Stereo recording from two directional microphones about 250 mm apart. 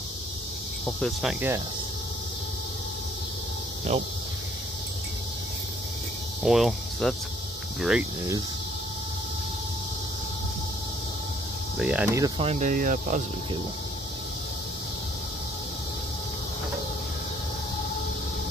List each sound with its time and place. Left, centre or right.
1.0 s speech: centre
3.9 s speech: right
6.4 s speech: centre
11.7 s speech: centre
12.4 s speech: right